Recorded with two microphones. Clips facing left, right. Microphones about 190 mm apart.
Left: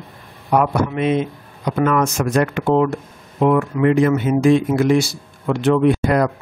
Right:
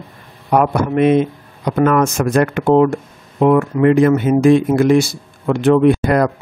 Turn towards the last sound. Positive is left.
turn(degrees=-55)  # may be behind; listen again after turning